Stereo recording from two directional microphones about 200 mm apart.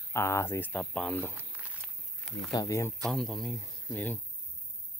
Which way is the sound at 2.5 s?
15° left (ahead or behind).